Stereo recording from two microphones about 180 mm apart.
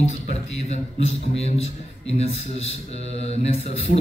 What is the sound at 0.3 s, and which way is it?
Speech, 35° left (ahead or behind).